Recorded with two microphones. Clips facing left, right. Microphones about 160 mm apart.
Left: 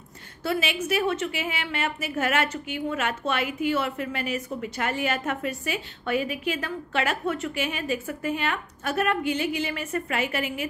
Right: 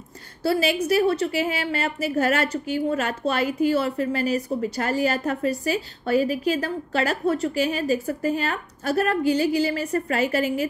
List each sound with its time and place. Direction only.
0.4 s a woman's voice: 35° right (ahead or behind)